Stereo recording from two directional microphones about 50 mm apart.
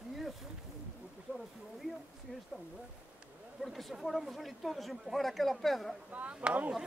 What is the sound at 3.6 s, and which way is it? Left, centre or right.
Speech, centre.